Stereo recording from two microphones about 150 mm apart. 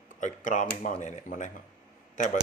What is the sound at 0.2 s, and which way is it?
Speech, 60° left (ahead or behind).